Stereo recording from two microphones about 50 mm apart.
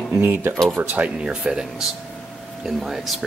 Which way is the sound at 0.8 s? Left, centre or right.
Right.